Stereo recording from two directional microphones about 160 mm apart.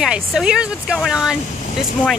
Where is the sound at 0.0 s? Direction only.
5° right (ahead or behind).